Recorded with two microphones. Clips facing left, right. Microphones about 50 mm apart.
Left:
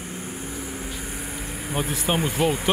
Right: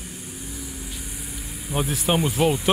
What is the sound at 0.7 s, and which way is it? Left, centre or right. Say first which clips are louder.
Vehicle: left 4 dB; left.